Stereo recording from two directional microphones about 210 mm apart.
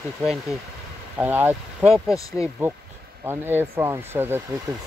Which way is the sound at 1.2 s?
10° right (ahead or behind).